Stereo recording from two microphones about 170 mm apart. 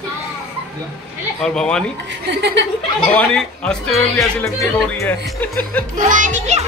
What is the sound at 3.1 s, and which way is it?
Speech, 5° left (ahead or behind).